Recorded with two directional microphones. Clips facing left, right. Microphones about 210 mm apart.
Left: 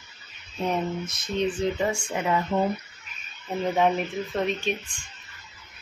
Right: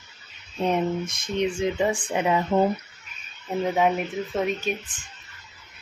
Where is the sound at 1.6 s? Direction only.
15° right (ahead or behind).